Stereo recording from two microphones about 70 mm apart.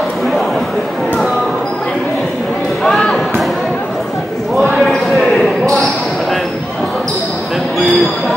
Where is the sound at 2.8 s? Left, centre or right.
Centre.